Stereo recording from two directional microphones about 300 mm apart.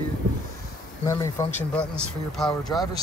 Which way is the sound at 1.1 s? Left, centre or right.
Centre.